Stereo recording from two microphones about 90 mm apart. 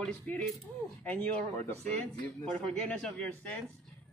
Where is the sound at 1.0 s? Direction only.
15° left (ahead or behind).